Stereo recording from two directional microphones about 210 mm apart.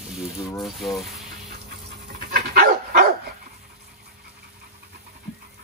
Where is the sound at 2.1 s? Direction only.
45° right (ahead or behind).